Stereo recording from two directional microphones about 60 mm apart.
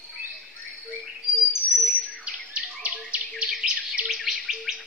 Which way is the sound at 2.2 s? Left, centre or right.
Right.